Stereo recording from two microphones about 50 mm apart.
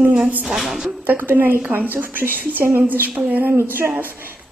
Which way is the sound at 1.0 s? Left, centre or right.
Right.